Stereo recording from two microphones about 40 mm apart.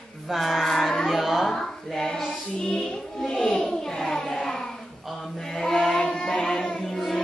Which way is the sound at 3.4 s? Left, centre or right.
Centre.